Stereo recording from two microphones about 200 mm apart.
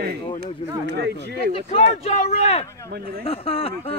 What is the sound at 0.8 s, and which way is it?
Speech, 55° right (ahead or behind).